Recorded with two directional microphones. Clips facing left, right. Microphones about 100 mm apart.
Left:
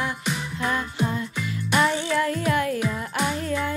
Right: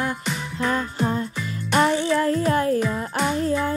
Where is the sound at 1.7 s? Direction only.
40° right (ahead or behind).